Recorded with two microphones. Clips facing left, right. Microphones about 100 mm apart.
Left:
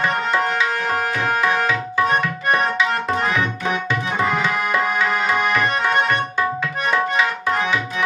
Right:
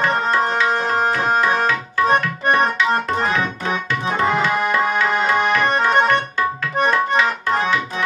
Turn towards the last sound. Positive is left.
turn(degrees=-25)  # may be behind; listen again after turning